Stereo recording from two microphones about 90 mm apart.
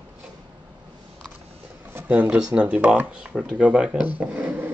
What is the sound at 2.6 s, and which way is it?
Speech, 15° right (ahead or behind).